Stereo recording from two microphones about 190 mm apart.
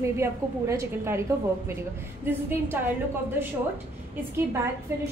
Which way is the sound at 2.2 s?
10° right (ahead or behind).